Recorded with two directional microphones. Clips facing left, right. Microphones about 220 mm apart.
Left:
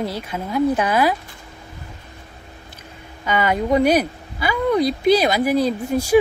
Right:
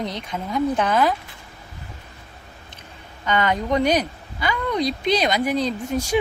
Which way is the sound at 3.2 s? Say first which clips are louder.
Left 2 dB; 10° left (ahead or behind).